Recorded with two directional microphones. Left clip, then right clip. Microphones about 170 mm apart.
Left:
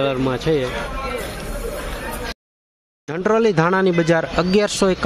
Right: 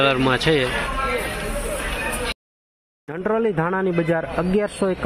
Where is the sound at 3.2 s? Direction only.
15° left (ahead or behind).